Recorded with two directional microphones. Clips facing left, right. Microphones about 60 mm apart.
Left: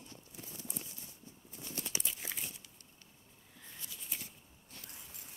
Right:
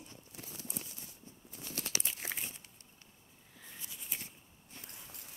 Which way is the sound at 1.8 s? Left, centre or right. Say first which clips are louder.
Right 2 dB; right.